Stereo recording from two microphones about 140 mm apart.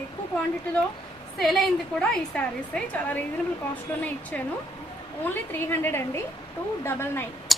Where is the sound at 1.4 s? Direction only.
Centre (ahead or behind).